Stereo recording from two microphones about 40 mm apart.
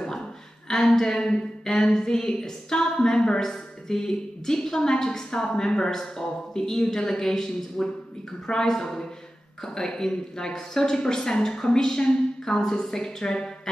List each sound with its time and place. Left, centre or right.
0.7 s a woman's voice: centre